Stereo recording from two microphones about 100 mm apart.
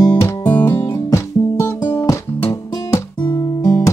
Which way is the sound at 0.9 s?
30° left (ahead or behind).